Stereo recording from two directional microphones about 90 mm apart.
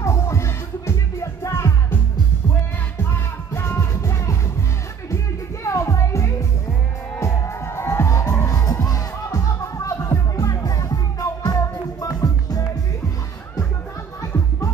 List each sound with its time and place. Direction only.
0.0 s music: 35° left (ahead or behind)
3.0 s music: 30° left (ahead or behind); by 12.6 s 45° left (ahead or behind)